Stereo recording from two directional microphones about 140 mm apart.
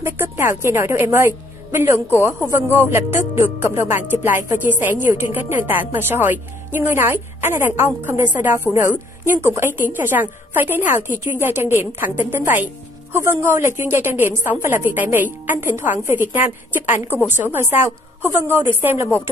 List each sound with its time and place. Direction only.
0.0 s a woman's voice: 15° right (ahead or behind)